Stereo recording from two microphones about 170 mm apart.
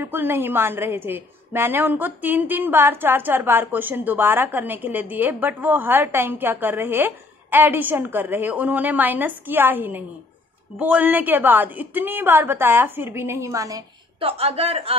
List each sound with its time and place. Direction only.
0.0 s a woman's voice: 15° right (ahead or behind)
14.2 s a woman's voice: 35° right (ahead or behind)